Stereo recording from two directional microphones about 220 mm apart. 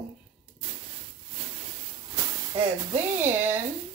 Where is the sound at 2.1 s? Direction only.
20° right (ahead or behind).